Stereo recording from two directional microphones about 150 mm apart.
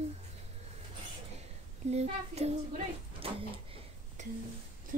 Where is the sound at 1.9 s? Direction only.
45° right (ahead or behind).